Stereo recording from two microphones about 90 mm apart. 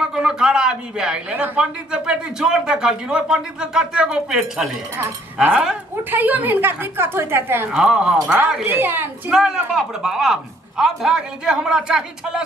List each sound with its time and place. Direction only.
0.0 s a woman's voice: 5° right (ahead or behind); by 7.6 s 25° right (ahead or behind)
7.7 s speech: 5° right (ahead or behind)
8.6 s a woman's voice: 25° right (ahead or behind)
9.3 s speech: 5° right (ahead or behind)